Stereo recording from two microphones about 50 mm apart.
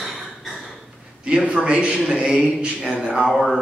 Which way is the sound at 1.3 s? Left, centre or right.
Centre.